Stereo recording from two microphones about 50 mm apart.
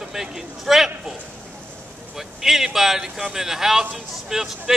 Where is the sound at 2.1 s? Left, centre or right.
Centre.